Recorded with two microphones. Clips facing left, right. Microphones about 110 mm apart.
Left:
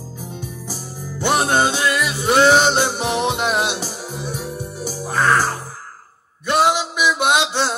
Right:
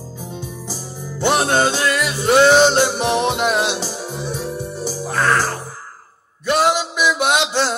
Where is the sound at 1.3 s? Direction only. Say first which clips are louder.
Even; 10° left (ahead or behind).